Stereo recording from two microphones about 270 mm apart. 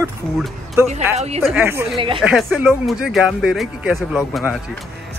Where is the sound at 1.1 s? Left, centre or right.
Right.